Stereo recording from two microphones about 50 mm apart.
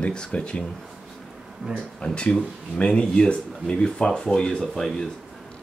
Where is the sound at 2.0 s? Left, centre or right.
Centre.